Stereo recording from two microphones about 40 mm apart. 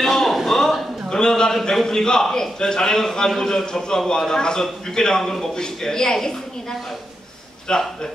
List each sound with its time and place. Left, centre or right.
0.0 s a sound: centre
1.1 s a man's voice: centre
7.7 s speech: left